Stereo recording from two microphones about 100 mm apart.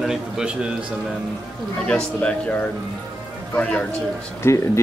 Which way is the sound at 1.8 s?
10° left (ahead or behind).